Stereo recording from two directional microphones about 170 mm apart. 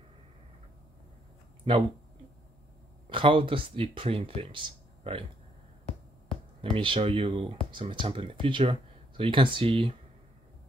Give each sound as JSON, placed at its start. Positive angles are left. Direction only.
{"t": 3.1, "sound": "speech", "side_deg": -30}
{"t": 6.6, "sound": "speech", "side_deg": -30}